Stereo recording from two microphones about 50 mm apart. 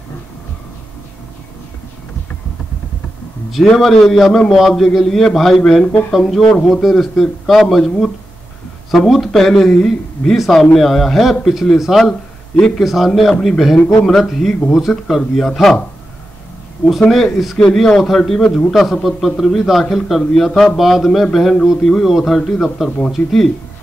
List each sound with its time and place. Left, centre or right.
3.7 s a man's voice: centre
12.5 s speech: centre
12.8 s a man's voice: centre
17.1 s a man's voice: centre
17.6 s a man's voice: centre